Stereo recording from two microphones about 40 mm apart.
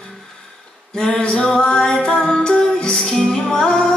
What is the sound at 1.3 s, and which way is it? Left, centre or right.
Music, centre.